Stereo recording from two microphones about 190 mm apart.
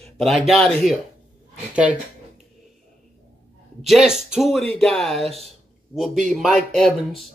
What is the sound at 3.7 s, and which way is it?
A woman's voice, centre (ahead or behind).